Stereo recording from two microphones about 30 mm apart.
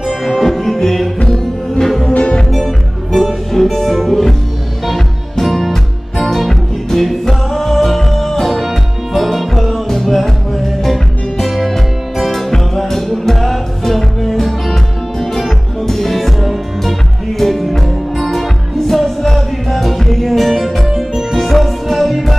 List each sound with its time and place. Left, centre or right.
0.2 s music: centre
2.1 s music: left
2.5 s music: centre
11.4 s music: centre